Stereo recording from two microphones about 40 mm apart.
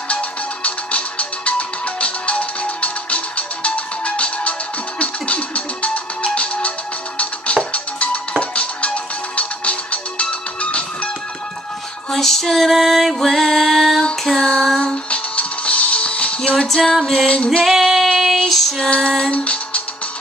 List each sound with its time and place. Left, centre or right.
0.1 s music: left
7.7 s music: left
12.1 s music: centre
14.2 s female singing: centre
14.8 s music: left
16.3 s music: centre
16.6 s music: centre
17.6 s female singing: centre
18.0 s child singing: centre
18.5 s female singing: centre
18.9 s music: centre
19.3 s music: left